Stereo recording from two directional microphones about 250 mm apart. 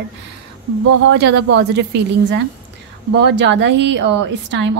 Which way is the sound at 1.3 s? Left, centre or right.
Right.